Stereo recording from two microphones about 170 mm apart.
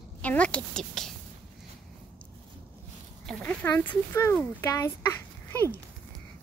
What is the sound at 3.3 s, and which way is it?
Speech, 5° left (ahead or behind).